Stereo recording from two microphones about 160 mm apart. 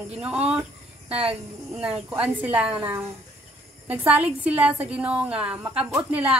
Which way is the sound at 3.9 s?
10° right (ahead or behind).